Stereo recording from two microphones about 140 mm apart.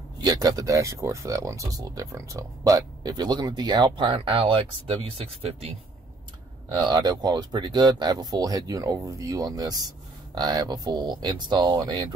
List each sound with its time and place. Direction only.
0.2 s speech: 30° right (ahead or behind)
6.8 s speech: 30° right (ahead or behind)